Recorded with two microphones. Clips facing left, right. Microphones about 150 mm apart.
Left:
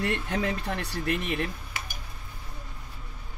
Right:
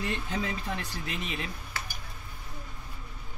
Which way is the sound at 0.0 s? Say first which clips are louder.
Left 4 dB; 65° left (ahead or behind).